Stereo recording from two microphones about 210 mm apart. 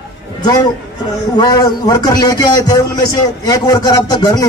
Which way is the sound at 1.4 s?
20° left (ahead or behind).